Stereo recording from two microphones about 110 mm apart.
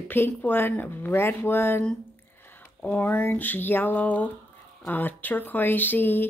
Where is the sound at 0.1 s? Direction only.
20° left (ahead or behind).